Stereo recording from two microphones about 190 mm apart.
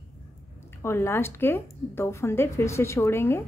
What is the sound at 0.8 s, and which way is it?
A woman's voice, 15° left (ahead or behind).